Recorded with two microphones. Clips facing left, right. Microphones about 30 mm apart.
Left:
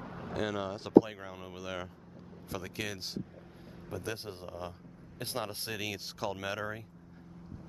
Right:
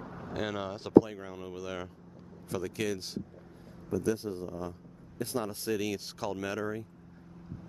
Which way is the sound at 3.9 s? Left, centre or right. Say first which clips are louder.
Right 8 dB; left.